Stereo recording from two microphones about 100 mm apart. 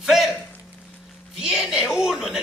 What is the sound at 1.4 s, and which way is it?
A woman's voice, 5° right (ahead or behind).